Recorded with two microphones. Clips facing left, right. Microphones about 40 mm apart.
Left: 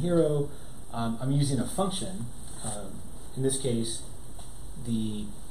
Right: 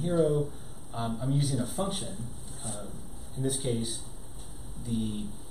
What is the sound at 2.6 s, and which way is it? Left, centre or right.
Speech, left.